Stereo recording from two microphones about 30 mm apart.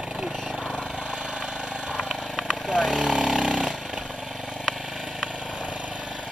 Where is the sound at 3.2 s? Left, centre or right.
Right.